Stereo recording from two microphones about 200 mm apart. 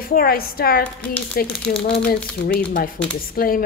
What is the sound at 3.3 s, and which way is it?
Speech, 45° left (ahead or behind).